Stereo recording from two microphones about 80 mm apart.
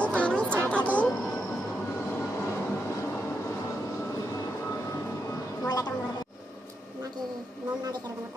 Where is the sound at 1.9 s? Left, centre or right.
Left.